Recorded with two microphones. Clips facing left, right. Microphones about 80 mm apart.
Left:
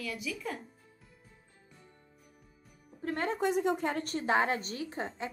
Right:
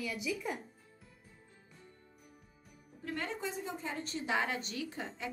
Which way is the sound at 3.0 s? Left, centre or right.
Left.